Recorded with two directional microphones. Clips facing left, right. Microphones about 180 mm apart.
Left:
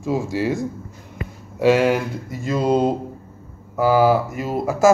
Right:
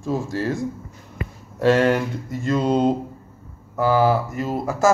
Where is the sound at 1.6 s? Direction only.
5° left (ahead or behind).